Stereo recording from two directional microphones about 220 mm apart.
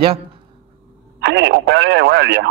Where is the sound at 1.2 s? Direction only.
50° right (ahead or behind).